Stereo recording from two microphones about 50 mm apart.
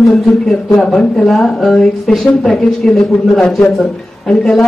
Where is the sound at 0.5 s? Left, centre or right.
Centre.